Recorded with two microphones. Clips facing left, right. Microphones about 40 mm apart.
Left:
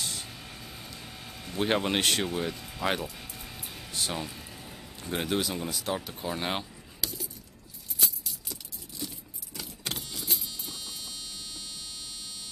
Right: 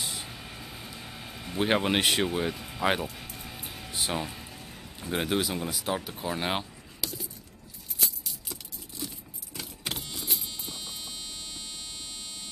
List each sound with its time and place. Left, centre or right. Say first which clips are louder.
0.0 s a sound: right 1 dB; centre
8.5 s keys jangling: right 1 dB; centre
10.1 s vehicle: even; centre
10.6 s music: right 1 dB; right